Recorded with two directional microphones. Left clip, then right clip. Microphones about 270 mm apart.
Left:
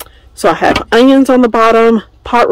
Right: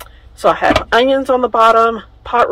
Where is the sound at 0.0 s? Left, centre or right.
Left.